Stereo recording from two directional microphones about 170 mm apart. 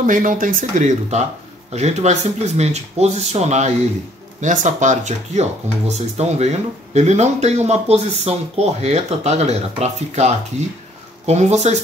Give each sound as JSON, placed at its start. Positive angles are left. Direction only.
{"t": 0.0, "sound": "speech", "side_deg": -50}